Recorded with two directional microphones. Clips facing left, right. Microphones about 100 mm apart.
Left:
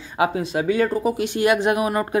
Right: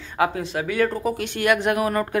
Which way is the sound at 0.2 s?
20° left (ahead or behind).